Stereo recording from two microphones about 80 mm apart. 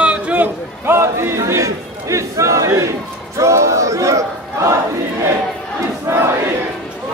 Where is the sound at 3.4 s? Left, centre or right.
Right.